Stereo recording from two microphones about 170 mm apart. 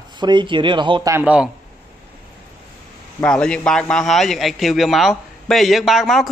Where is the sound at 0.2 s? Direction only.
25° right (ahead or behind).